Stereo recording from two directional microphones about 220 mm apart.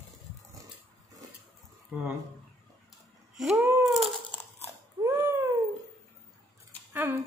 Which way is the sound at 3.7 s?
Centre (ahead or behind).